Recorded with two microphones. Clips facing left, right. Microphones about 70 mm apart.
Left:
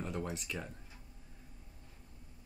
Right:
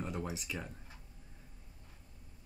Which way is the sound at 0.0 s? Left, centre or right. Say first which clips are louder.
Even; centre.